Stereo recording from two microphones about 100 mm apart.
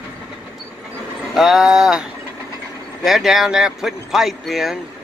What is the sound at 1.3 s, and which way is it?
Speech, centre (ahead or behind).